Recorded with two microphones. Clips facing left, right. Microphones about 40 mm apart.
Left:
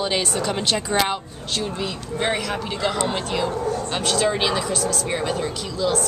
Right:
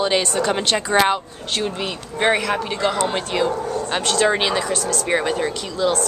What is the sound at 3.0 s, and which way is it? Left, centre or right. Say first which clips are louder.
Speech: right 3 dB; centre.